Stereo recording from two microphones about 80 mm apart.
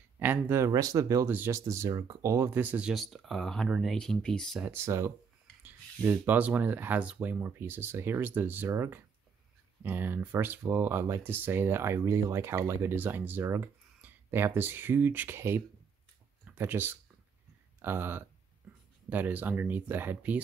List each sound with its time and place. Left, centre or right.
0.2 s speech: right
0.7 s speech: right
1.2 s speech: right
1.5 s speech: right
2.5 s speech: right
2.9 s speech: centre
4.6 s speech: right
12.9 s speech: right